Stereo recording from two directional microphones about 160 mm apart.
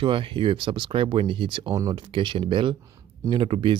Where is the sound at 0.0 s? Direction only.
35° right (ahead or behind).